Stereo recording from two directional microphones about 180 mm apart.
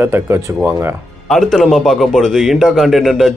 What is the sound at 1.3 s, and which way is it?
A man's voice, centre (ahead or behind).